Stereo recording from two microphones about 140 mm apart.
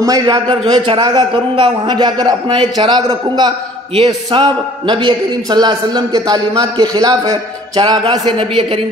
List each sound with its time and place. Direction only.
0.0 s a man's voice: 25° right (ahead or behind)
3.9 s a man's voice: 40° right (ahead or behind)